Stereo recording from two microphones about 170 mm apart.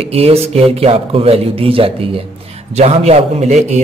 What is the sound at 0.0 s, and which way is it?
Speech, 35° right (ahead or behind).